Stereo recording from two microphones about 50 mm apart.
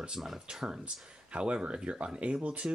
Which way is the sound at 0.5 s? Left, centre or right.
Centre.